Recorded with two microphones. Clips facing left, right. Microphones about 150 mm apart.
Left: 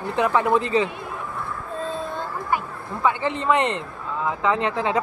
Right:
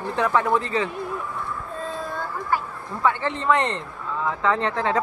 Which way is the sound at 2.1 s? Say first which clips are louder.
Even; 20° left (ahead or behind).